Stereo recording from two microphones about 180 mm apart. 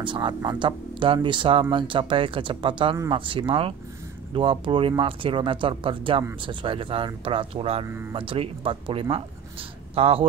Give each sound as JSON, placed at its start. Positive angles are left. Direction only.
{"t": 0.0, "sound": "speech", "side_deg": -25}